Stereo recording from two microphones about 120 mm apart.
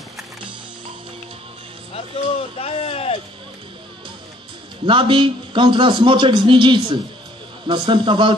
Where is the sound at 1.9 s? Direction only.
55° left (ahead or behind).